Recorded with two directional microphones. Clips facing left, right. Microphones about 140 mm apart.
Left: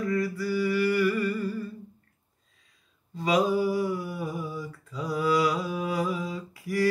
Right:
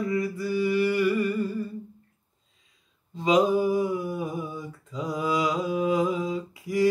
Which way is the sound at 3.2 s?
20° right (ahead or behind).